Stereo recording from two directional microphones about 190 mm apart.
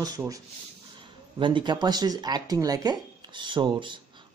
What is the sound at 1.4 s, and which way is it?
Speech, 25° right (ahead or behind).